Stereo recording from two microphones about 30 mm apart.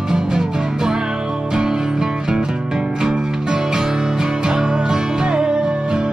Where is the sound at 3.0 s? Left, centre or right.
Centre.